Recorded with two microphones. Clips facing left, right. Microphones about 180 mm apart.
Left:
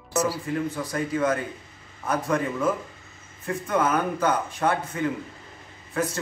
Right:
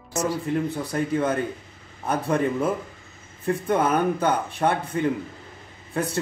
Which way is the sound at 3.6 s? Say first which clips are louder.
Right 2 dB; 30° right (ahead or behind).